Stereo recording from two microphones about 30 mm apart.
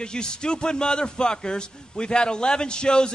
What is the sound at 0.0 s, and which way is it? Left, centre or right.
A man's voice, left.